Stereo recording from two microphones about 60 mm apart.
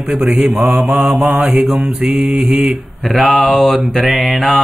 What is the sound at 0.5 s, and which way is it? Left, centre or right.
Mantra, right.